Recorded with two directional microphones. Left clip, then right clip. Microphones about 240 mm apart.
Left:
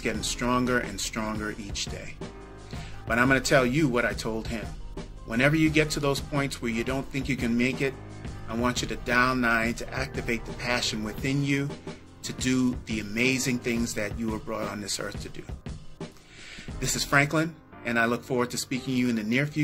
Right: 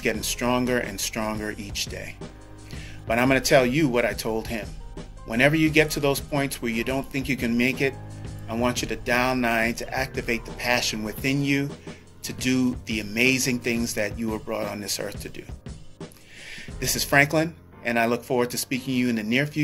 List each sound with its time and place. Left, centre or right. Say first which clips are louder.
0.0 s speech: right 4 dB; centre
3.1 s speech: right 3 dB; centre
16.8 s speech: right 4 dB; centre